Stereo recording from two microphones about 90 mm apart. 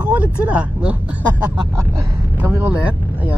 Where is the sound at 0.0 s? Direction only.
15° right (ahead or behind).